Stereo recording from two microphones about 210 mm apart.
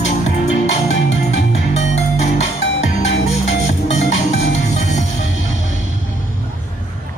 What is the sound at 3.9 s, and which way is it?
Music, 30° left (ahead or behind).